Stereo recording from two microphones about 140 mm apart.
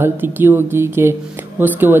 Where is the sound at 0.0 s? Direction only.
15° right (ahead or behind).